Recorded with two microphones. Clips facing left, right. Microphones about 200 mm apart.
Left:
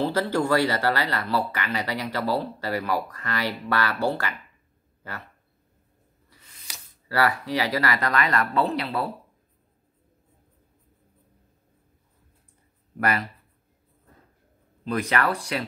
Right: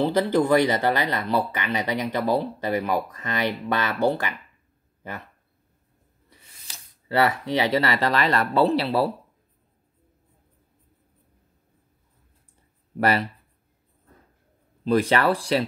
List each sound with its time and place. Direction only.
0.0 s speech: 15° right (ahead or behind)
7.1 s speech: 25° right (ahead or behind)
13.0 s speech: 30° right (ahead or behind)
14.9 s speech: 30° right (ahead or behind)